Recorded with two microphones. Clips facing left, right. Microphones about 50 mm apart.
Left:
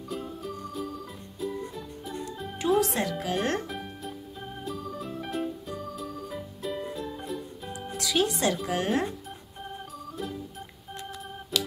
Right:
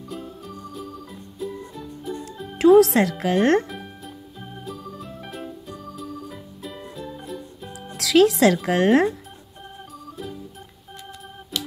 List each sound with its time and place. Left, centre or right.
0.1 s music: centre
2.6 s speech: right
3.6 s music: centre
8.0 s speech: right
9.6 s organ: centre